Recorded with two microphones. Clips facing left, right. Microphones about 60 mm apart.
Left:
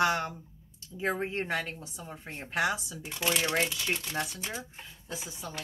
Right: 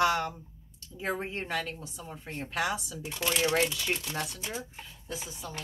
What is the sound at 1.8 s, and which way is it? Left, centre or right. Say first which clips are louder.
Speech: right 1 dB; centre.